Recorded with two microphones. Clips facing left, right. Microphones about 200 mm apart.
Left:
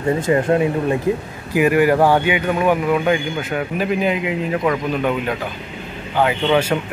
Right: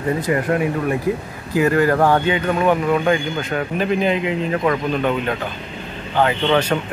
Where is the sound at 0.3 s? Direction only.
25° left (ahead or behind).